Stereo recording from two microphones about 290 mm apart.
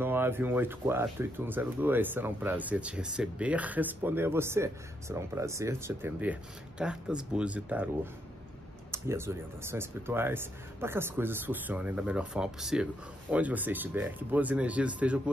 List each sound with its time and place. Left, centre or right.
0.0 s speech: centre